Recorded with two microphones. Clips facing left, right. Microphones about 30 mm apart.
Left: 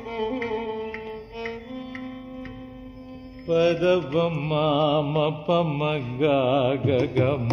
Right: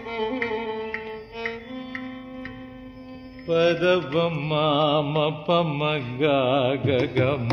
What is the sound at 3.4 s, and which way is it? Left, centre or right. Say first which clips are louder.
Mantra: even; right.